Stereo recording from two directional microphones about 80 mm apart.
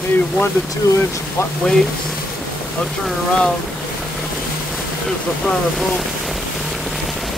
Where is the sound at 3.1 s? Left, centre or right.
Centre.